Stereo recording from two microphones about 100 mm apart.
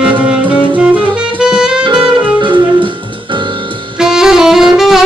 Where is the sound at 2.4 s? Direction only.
55° right (ahead or behind).